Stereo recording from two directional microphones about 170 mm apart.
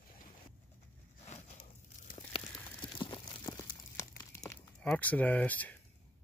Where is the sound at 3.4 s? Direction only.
20° left (ahead or behind).